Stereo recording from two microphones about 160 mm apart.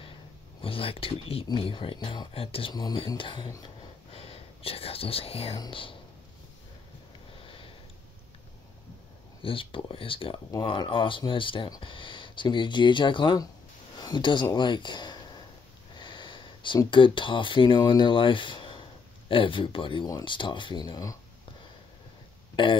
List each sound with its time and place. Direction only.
0.0 s speech: 35° left (ahead or behind)
3.6 s whispering: 35° left (ahead or behind)
5.6 s speech: 35° left (ahead or behind)
7.3 s sniff: 35° left (ahead or behind)
9.4 s speech: 35° left (ahead or behind)
22.6 s speech: 30° left (ahead or behind)